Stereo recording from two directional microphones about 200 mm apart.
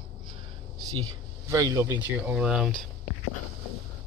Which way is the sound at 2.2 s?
5° right (ahead or behind).